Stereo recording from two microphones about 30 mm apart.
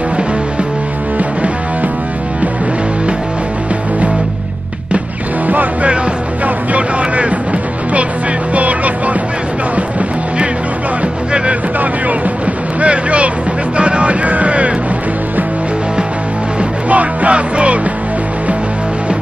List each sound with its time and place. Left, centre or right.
5.5 s music: right
7.0 s music: right
8.5 s music: right
12.8 s vehicle: right
13.7 s music: right
16.9 s music: right
17.3 s music: right